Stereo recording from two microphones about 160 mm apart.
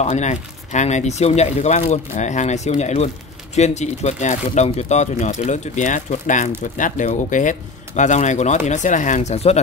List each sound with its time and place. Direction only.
0.0 s speech: 45° left (ahead or behind)